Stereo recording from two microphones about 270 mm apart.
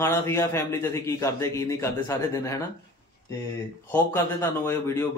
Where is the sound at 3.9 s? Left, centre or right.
Centre.